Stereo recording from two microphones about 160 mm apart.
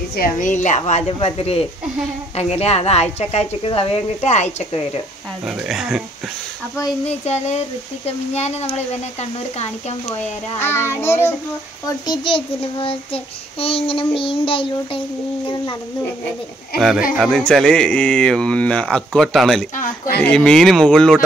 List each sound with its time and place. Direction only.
0.1 s speech: 60° left (ahead or behind); by 1.7 s 40° left (ahead or behind)
2.3 s child singing: 40° left (ahead or behind)
5.7 s speech: 5° right (ahead or behind)
7.1 s speech: 45° left (ahead or behind)
10.6 s child singing: 15° left (ahead or behind)
11.8 s child singing: 30° left (ahead or behind)
17.2 s speech: 5° left (ahead or behind)